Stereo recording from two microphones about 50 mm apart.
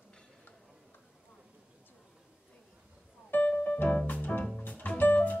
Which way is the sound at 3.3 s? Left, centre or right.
Left.